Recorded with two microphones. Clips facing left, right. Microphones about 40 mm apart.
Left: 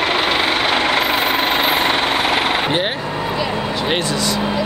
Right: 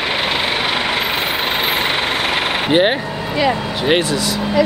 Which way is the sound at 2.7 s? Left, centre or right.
Centre.